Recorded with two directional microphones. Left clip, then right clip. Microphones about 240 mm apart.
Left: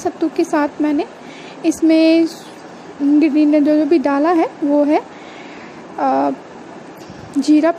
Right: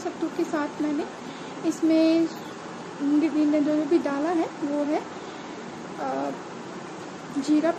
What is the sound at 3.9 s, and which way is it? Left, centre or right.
A woman's voice, left.